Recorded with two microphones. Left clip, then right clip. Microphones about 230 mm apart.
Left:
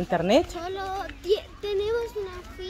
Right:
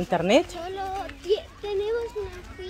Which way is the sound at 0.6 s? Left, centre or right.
Left.